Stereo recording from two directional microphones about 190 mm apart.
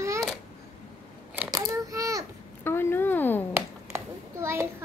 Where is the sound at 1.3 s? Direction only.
15° right (ahead or behind).